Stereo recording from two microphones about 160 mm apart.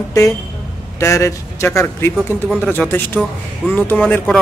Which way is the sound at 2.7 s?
10° left (ahead or behind).